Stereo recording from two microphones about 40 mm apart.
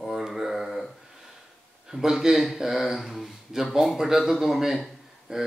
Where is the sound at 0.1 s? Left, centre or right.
Centre.